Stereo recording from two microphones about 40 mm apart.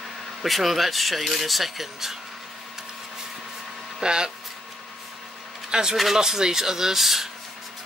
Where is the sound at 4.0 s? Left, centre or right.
Right.